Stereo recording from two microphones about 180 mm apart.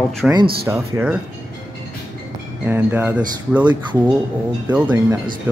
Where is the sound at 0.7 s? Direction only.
15° right (ahead or behind).